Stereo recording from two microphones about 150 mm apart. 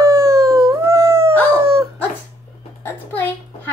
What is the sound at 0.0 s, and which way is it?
Howl, 20° right (ahead or behind).